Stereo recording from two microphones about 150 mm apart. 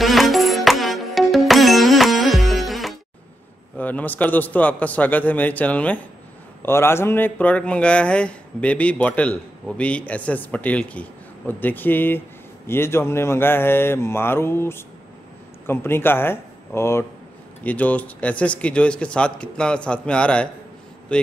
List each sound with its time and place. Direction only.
0.0 s music: centre (ahead or behind)
3.7 s speech: 10° left (ahead or behind)